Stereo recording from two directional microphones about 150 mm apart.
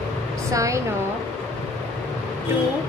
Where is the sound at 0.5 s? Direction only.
20° right (ahead or behind).